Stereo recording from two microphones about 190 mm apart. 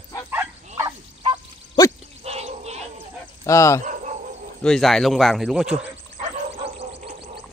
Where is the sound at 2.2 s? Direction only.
35° right (ahead or behind).